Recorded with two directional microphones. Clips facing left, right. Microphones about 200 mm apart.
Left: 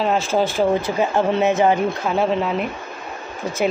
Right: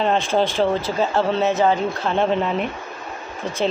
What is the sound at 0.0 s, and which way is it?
Speech, 5° left (ahead or behind).